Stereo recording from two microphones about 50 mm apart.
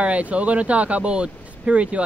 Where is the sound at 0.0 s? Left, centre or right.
Right.